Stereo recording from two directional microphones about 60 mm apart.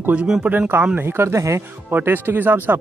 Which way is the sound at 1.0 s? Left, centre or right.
Right.